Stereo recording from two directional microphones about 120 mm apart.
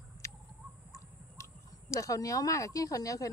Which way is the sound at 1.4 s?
25° left (ahead or behind).